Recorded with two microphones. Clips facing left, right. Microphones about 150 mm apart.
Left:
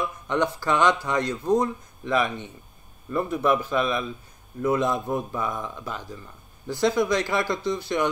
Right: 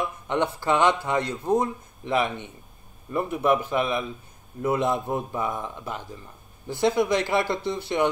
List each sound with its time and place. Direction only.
0.3 s a man's voice: 20° right (ahead or behind)